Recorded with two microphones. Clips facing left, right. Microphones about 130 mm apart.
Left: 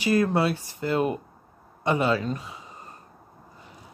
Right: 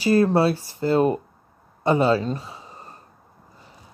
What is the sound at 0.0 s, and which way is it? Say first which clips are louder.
Speech: right 4 dB; 30° right (ahead or behind).